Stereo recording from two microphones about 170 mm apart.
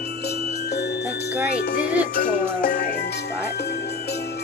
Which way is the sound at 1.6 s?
60° left (ahead or behind).